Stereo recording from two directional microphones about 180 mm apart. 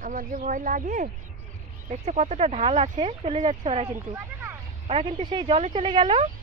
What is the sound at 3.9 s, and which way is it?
Speech, 15° right (ahead or behind).